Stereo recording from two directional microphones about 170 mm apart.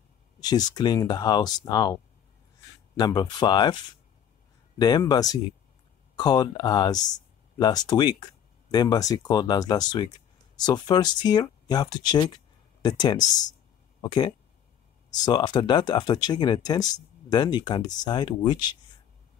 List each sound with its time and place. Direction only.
0.4 s speech: 25° left (ahead or behind)
3.0 s speech: 25° left (ahead or behind)